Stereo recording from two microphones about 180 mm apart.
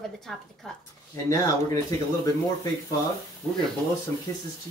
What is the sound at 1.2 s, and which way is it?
Speech, 20° left (ahead or behind).